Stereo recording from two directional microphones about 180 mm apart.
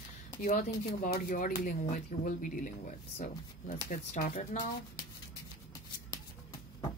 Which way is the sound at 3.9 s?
50° left (ahead or behind).